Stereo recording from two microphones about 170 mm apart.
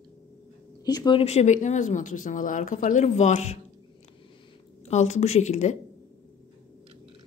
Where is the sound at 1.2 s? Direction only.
40° left (ahead or behind).